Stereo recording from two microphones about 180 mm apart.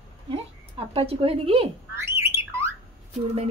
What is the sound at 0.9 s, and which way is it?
Speech, 30° right (ahead or behind).